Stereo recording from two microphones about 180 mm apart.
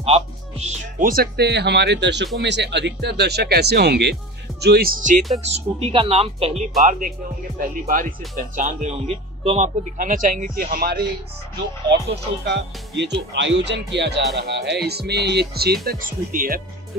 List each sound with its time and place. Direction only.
0.0 s speech: 35° right (ahead or behind)
5.4 s speech: 35° right (ahead or behind)
6.8 s speech: 50° right (ahead or behind)
11.9 s speech: 70° right (ahead or behind); by 16.6 s 50° right (ahead or behind)